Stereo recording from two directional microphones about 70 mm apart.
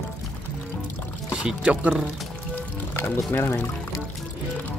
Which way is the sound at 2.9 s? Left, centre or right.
Left.